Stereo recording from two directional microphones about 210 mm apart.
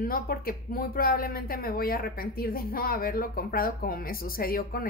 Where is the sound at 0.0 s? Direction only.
45° left (ahead or behind).